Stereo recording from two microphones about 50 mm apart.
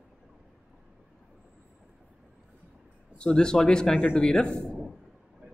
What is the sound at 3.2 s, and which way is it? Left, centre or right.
Speech, centre.